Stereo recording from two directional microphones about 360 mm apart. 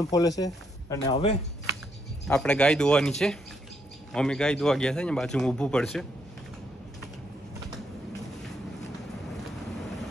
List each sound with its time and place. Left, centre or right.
0.0 s speech: centre
2.2 s speech: centre